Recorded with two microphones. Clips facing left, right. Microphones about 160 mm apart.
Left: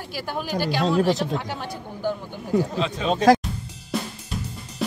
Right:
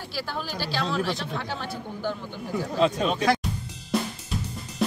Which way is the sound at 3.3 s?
40° left (ahead or behind).